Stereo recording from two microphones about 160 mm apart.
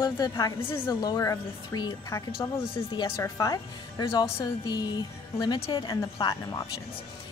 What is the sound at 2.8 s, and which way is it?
Speech, 30° left (ahead or behind).